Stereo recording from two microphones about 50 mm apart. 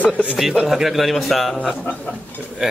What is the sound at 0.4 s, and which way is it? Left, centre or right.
A man's voice, centre.